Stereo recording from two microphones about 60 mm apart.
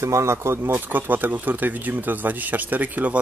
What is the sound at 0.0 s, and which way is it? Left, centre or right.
Speech, right.